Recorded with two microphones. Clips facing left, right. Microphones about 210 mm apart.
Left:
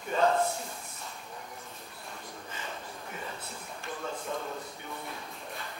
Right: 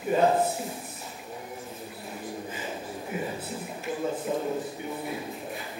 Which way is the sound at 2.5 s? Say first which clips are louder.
Right 6 dB; 10° right (ahead or behind).